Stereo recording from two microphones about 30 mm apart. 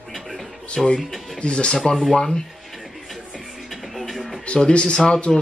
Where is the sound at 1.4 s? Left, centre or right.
Left.